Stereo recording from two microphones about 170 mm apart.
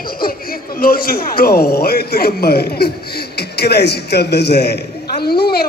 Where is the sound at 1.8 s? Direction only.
65° left (ahead or behind).